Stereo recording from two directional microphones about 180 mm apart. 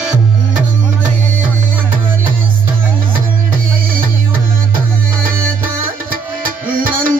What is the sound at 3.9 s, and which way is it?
Music, 50° right (ahead or behind).